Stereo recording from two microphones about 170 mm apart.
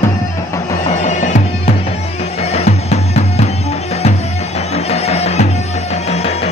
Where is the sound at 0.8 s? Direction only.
45° left (ahead or behind).